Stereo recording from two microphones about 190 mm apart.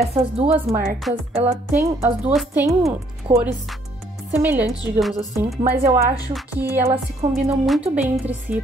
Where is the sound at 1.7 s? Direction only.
10° right (ahead or behind).